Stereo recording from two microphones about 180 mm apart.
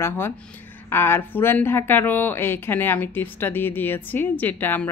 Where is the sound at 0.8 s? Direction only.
10° left (ahead or behind).